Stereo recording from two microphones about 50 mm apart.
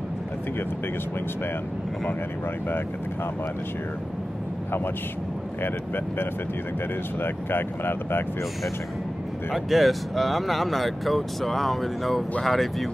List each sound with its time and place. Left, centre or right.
7.2 s speech: left
9.5 s speech: centre